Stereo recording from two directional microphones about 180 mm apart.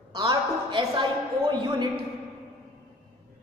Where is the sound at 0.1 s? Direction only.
25° right (ahead or behind).